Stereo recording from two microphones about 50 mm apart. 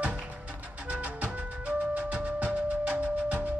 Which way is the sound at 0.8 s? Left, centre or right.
Right.